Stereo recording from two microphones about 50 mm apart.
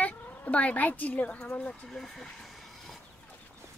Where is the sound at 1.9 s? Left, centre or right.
Centre.